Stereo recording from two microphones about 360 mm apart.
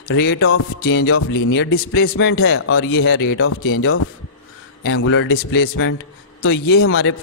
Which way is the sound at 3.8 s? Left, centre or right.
Left.